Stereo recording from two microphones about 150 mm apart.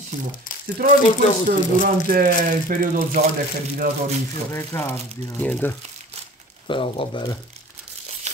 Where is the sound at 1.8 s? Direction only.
75° right (ahead or behind).